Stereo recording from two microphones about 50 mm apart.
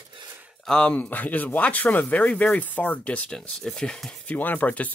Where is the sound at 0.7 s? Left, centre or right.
Left.